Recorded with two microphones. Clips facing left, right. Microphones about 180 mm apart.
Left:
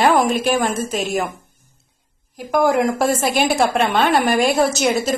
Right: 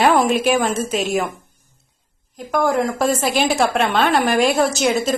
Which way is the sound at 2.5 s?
15° left (ahead or behind).